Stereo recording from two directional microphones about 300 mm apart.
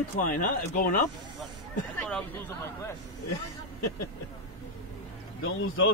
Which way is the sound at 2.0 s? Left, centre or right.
Centre.